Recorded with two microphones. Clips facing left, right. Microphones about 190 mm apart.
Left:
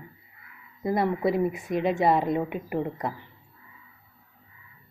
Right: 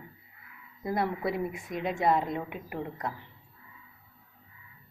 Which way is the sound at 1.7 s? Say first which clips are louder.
Left 8 dB; 50° left (ahead or behind).